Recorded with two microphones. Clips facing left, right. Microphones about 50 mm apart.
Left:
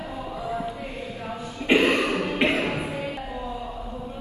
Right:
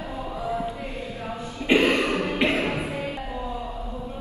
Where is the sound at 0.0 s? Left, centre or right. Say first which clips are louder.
Right 1 dB; right.